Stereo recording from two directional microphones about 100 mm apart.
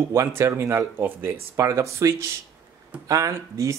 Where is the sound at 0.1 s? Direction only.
30° right (ahead or behind).